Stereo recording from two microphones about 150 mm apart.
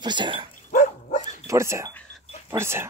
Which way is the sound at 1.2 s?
20° right (ahead or behind).